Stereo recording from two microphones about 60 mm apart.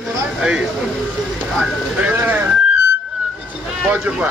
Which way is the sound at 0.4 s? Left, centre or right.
Centre.